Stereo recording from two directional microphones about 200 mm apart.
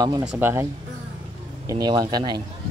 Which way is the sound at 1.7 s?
20° right (ahead or behind).